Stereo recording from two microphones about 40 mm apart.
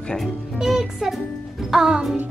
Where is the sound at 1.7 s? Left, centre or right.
Centre.